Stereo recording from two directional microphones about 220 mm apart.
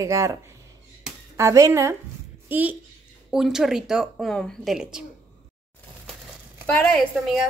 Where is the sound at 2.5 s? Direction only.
10° right (ahead or behind).